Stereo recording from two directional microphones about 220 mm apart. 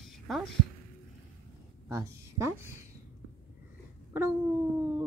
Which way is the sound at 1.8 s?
15° right (ahead or behind).